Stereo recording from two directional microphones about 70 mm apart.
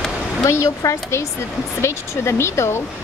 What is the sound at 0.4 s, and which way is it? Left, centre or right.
Speech, left.